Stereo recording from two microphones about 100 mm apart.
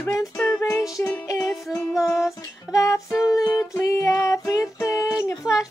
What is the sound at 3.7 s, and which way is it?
Child singing, 30° left (ahead or behind).